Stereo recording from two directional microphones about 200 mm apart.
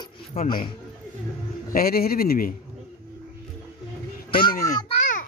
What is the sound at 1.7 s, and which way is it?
Speech, 50° left (ahead or behind).